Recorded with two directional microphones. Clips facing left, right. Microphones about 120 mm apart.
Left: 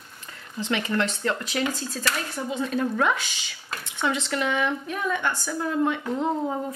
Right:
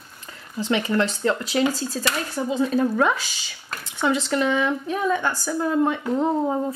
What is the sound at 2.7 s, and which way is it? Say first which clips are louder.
A woman's voice: right 2 dB; 35° right (ahead or behind).